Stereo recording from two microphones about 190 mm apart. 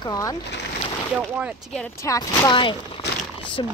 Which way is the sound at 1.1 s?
5° right (ahead or behind).